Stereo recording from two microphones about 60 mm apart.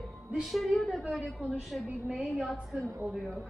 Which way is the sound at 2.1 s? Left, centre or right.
Centre.